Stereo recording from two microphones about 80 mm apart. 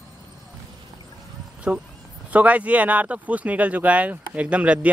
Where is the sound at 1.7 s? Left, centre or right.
Centre.